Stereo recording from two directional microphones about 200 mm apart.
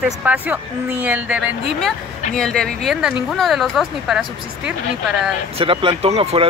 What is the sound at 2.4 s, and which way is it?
Speech, 5° left (ahead or behind).